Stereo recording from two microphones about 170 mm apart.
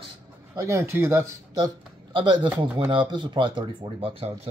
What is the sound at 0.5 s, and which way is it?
Speech, 15° right (ahead or behind).